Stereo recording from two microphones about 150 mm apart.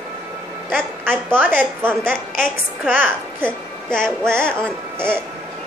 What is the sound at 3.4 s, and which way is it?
Speech, 5° left (ahead or behind).